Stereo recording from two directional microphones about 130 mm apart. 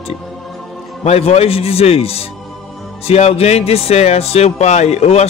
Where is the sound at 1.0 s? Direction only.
50° left (ahead or behind).